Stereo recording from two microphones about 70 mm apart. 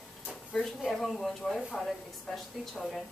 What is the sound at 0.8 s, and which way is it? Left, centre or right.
A woman's voice, centre.